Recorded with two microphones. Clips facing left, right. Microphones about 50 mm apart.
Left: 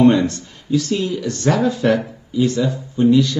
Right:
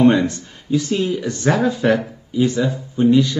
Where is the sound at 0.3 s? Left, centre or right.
Centre.